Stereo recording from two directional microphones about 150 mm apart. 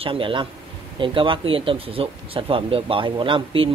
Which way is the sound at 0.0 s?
35° right (ahead or behind).